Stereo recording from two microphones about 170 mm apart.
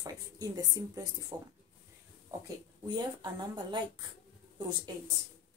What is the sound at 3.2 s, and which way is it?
A woman's voice, 25° right (ahead or behind).